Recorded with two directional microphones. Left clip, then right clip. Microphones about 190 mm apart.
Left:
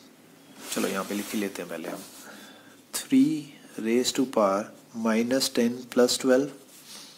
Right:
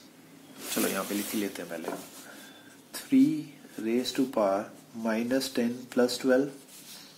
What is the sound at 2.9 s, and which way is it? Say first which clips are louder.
Speech: left 1 dB; 35° left (ahead or behind).